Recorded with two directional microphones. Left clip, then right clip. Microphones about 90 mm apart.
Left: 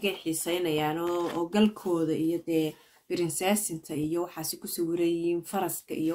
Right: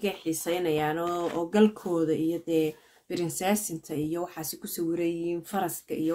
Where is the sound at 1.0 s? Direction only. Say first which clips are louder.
Even; 15° left (ahead or behind).